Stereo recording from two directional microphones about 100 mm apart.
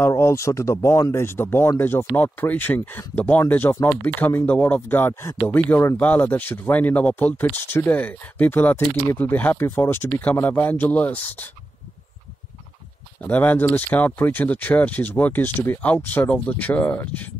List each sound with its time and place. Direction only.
0.0 s speech: 25° left (ahead or behind)
13.2 s speech: 15° left (ahead or behind)